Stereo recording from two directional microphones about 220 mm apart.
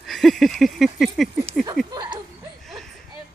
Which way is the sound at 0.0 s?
Centre (ahead or behind).